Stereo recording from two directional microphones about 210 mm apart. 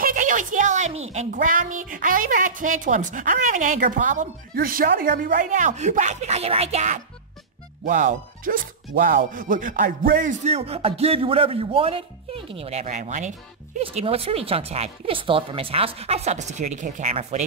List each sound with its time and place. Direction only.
0.0 s a woman's voice: 40° right (ahead or behind)